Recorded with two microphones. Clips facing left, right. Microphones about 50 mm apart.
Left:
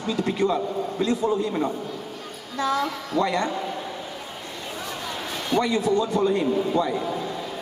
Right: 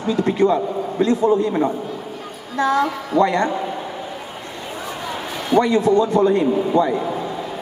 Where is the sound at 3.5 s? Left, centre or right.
Centre.